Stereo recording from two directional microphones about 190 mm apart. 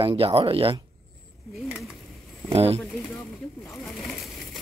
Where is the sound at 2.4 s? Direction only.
30° right (ahead or behind).